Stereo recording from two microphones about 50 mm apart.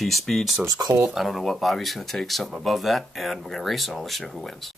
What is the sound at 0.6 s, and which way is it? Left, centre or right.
Speech, right.